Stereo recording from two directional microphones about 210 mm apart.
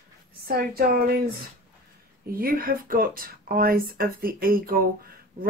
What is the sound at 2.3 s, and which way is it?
Speech, 45° right (ahead or behind).